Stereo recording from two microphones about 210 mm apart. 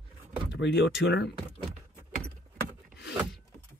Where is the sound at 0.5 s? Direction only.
60° left (ahead or behind).